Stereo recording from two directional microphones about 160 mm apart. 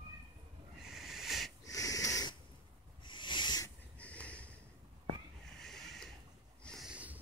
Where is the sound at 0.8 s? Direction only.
Centre (ahead or behind).